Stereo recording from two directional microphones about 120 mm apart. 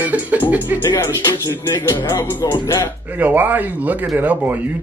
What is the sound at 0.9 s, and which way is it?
Speech, 25° left (ahead or behind).